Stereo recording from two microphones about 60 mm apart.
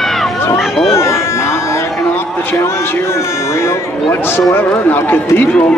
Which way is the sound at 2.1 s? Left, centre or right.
Left.